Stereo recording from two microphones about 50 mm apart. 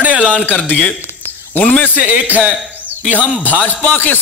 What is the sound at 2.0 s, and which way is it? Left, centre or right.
Speech, right.